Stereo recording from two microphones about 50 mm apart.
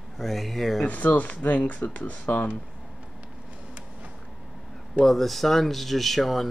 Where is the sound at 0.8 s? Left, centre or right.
Left.